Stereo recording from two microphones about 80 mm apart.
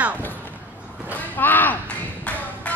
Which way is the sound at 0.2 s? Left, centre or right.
Left.